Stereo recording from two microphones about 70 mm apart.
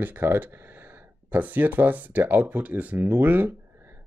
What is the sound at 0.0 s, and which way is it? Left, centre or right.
Speech, right.